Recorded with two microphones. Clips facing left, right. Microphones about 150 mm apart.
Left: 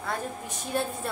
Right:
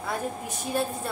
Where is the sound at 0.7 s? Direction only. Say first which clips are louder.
Right 1 dB; 5° right (ahead or behind).